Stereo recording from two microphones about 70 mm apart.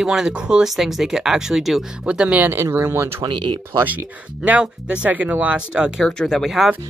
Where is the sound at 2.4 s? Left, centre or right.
Right.